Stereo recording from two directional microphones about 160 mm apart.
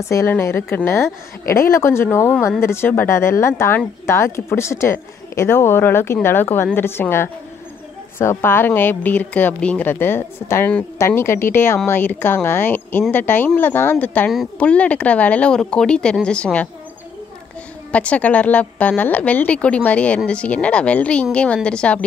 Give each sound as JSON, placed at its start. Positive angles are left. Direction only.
{"t": 0.0, "sound": "speech", "side_deg": 15}
{"t": 17.9, "sound": "speech", "side_deg": 10}